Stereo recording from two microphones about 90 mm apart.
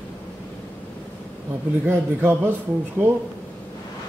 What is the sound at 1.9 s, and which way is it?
Speech, 25° right (ahead or behind).